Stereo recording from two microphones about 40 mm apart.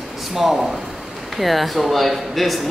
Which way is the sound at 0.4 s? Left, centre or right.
Centre.